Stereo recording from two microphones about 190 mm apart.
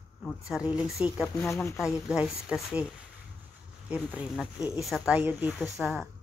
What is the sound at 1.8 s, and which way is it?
Speech, 5° right (ahead or behind).